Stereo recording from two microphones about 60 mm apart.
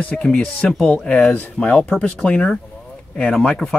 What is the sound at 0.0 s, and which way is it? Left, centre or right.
Speech, centre.